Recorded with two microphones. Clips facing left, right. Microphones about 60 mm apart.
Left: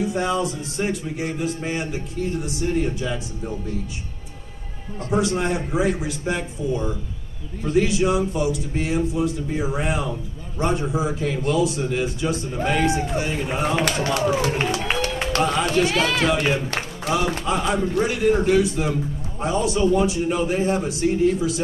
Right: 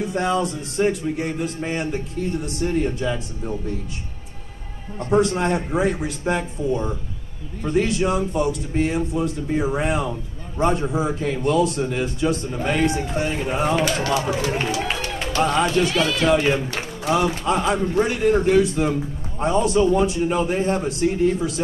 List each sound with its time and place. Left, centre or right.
0.0 s a man's voice: centre
5.1 s a man's voice: centre
15.4 s a man's voice: centre
15.9 s a man's voice: left
16.3 s a man's voice: centre